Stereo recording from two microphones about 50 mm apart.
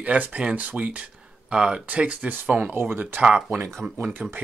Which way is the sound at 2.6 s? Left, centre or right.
Right.